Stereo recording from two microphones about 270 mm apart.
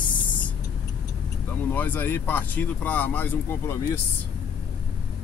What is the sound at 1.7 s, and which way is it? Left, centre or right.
Speech, centre.